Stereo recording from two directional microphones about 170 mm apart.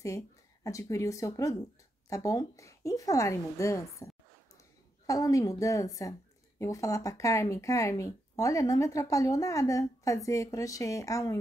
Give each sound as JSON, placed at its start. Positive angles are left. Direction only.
{"t": 0.7, "sound": "a woman's voice", "side_deg": 20}